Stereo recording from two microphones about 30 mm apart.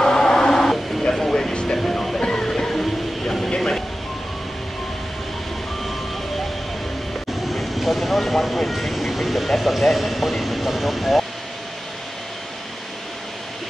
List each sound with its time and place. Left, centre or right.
0.0 s a sound: left
1.5 s music: left
1.8 s music: centre
3.4 s vehicle: centre
7.4 s vehicle: centre
9.9 s train: centre